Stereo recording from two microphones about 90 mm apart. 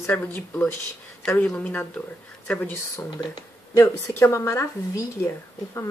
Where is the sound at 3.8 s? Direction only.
30° left (ahead or behind).